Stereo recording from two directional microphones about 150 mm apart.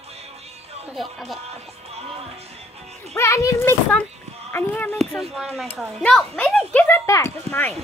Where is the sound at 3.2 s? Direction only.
20° left (ahead or behind).